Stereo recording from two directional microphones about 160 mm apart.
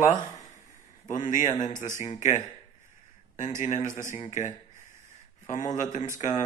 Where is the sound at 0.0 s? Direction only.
50° left (ahead or behind).